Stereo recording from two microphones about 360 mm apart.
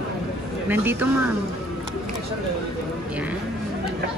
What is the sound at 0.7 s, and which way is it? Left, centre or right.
Speech, centre.